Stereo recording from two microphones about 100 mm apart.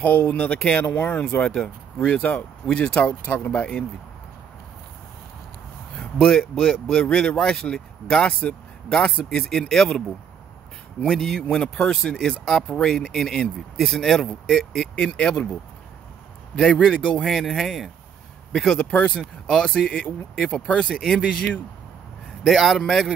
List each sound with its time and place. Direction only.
0.0 s speech: 15° left (ahead or behind)
5.9 s speech: 5° left (ahead or behind)
16.5 s speech: 10° left (ahead or behind)